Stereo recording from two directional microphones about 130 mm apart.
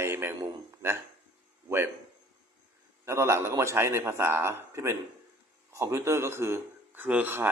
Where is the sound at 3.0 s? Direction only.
20° right (ahead or behind).